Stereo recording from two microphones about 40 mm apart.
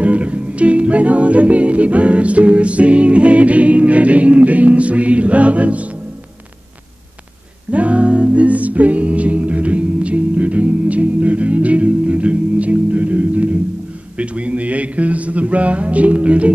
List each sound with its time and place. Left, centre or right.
0.0 s music: right
7.7 s music: right
14.1 s a sound: right